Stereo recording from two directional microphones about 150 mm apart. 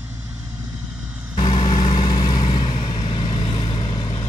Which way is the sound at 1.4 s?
35° left (ahead or behind).